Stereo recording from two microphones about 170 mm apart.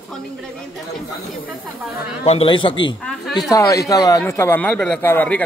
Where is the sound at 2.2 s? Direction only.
35° left (ahead or behind).